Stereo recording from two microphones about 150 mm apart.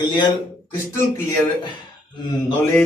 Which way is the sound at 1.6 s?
30° left (ahead or behind).